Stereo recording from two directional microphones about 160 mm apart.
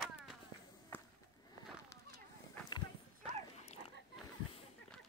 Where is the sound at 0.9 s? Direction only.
10° left (ahead or behind).